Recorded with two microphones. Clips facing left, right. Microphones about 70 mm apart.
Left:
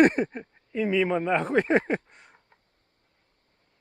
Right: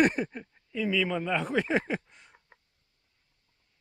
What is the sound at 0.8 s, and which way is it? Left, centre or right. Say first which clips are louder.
A man's voice: left 4 dB; left.